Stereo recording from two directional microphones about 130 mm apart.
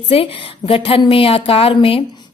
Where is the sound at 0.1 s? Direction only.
45° left (ahead or behind).